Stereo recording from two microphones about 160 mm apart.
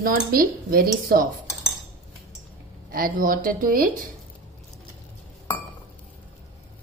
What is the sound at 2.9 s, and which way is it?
A woman's voice, 65° right (ahead or behind).